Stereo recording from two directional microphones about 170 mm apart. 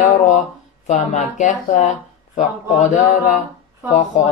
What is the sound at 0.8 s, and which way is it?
Speech, 45° left (ahead or behind).